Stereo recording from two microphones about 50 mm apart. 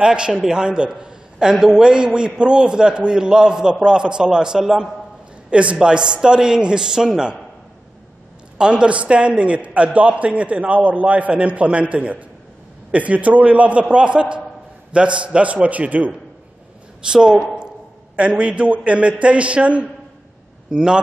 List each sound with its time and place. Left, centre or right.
0.0 s a man's voice: centre
5.5 s a man's voice: right
8.5 s a man's voice: centre
17.0 s a man's voice: centre
20.7 s a man's voice: centre